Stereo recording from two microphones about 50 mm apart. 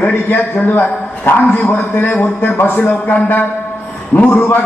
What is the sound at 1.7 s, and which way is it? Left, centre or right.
A man's voice, left.